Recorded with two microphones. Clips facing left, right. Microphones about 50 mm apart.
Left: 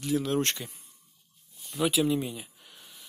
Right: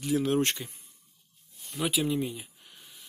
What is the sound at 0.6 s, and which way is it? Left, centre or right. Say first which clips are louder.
Speech: even; centre.